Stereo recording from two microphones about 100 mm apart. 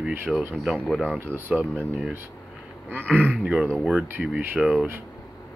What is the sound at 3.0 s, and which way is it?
Speech, 10° left (ahead or behind).